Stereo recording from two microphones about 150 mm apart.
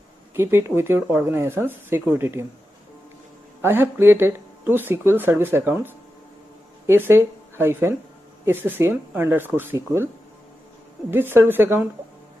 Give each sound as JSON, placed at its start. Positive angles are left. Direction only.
{"t": 0.3, "sound": "speech", "side_deg": -15}
{"t": 3.6, "sound": "speech", "side_deg": -15}
{"t": 6.9, "sound": "speech", "side_deg": -15}
{"t": 11.1, "sound": "speech", "side_deg": -15}